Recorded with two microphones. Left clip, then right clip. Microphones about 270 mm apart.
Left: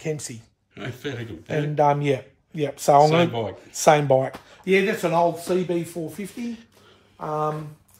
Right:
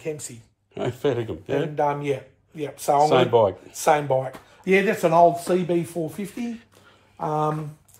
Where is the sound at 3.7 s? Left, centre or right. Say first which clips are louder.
Left 3 dB; left.